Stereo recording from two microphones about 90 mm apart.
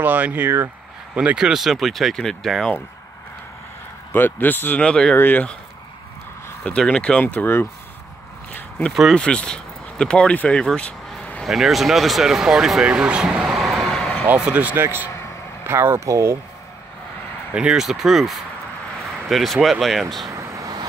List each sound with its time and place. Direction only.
0.0 s speech: 20° right (ahead or behind)
1.1 s speech: 10° right (ahead or behind); by 2.7 s 5° left (ahead or behind)
4.1 s speech: 20° left (ahead or behind)
6.6 s speech: 10° left (ahead or behind)
8.5 s a sound: 15° left (ahead or behind)
9.1 s speech: 10° left (ahead or behind)
11.4 s speech: 5° right (ahead or behind)
14.2 s speech: 15° right (ahead or behind); by 16.3 s 30° right (ahead or behind)
17.5 s speech: 10° right (ahead or behind)
20.2 s vehicle: 40° right (ahead or behind)